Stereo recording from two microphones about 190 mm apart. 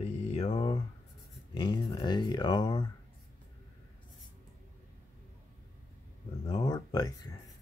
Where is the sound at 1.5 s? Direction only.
25° left (ahead or behind).